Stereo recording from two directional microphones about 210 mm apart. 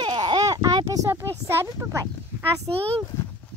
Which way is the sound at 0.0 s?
20° right (ahead or behind).